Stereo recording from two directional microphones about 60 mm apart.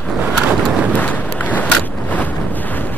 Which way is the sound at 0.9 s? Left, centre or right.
Left.